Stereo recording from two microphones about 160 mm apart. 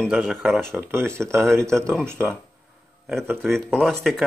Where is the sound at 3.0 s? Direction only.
Centre (ahead or behind).